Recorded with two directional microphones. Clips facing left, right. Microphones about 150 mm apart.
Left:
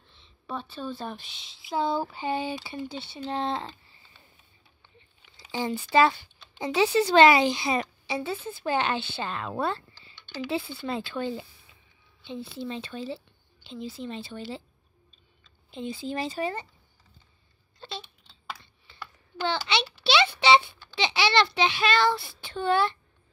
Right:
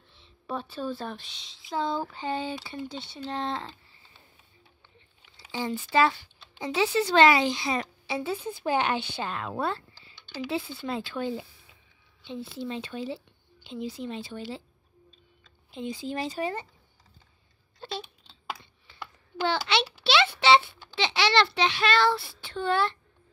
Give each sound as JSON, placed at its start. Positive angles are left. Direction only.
{"t": 0.1, "sound": "speech", "side_deg": -5}
{"t": 5.4, "sound": "speech", "side_deg": 20}
{"t": 8.1, "sound": "a woman's voice", "side_deg": -10}
{"t": 15.7, "sound": "a woman's voice", "side_deg": -10}
{"t": 17.8, "sound": "speech", "side_deg": -10}
{"t": 18.5, "sound": "computer keyboard", "side_deg": -15}
{"t": 19.3, "sound": "a child's voice", "side_deg": -10}